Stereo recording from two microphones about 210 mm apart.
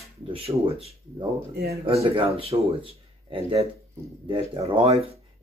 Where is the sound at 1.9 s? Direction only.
25° right (ahead or behind).